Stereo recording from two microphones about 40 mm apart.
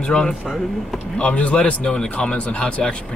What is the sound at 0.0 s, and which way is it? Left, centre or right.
Speech, centre.